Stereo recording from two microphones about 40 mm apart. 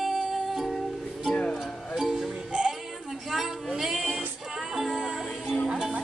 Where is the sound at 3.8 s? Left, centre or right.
Centre.